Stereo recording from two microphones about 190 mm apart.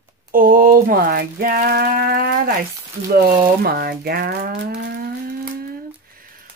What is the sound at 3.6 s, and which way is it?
Speech, 55° right (ahead or behind).